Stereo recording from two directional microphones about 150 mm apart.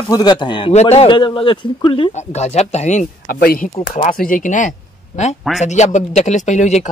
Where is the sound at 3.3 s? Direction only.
80° left.